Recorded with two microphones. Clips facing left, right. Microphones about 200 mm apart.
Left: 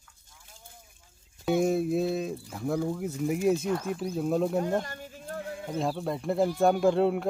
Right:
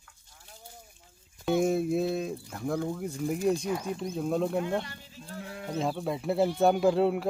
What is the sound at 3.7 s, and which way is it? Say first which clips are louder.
Speech: left 2 dB; 10° right (ahead or behind).